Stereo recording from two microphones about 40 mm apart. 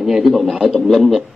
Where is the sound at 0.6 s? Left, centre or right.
Centre.